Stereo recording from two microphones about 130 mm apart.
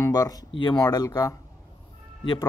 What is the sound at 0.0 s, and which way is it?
Speech, 25° left (ahead or behind).